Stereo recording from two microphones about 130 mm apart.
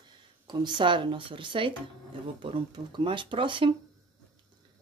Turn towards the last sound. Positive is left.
turn(degrees=-40)  # may be behind; listen again after turning